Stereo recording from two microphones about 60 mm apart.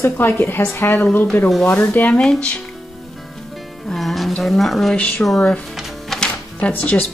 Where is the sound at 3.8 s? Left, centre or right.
Centre.